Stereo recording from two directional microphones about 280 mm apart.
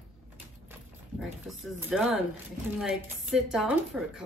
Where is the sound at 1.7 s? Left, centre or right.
Centre.